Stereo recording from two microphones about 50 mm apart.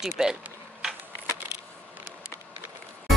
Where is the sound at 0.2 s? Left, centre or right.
Centre.